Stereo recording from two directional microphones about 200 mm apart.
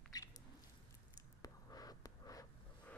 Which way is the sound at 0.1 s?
20° left (ahead or behind).